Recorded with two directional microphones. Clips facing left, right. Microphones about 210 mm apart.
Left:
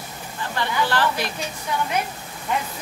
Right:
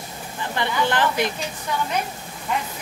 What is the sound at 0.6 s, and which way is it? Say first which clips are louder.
Speech: right 1 dB; 20° right (ahead or behind).